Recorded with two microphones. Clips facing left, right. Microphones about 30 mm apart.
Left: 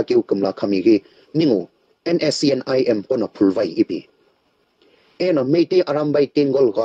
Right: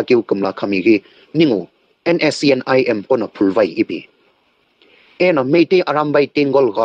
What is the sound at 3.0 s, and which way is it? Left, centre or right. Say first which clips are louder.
Speech: right 2 dB; right.